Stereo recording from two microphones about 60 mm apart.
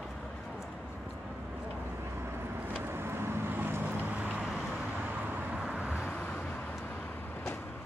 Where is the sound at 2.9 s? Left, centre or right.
Right.